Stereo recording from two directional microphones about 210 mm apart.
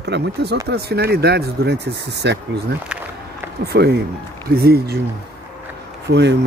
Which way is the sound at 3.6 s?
50° right (ahead or behind).